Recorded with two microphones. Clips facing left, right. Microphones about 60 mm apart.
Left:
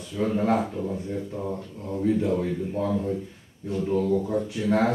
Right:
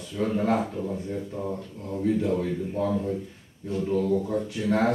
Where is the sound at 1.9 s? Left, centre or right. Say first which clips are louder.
Left 1 dB; centre.